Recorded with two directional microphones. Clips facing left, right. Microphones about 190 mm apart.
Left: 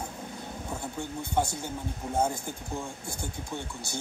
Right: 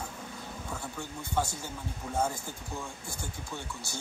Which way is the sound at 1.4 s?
20° left (ahead or behind).